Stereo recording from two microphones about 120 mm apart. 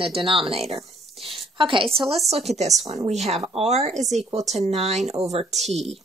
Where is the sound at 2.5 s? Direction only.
65° right (ahead or behind).